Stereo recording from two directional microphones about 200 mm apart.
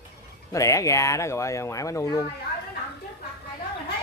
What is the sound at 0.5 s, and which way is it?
Speech, 15° left (ahead or behind).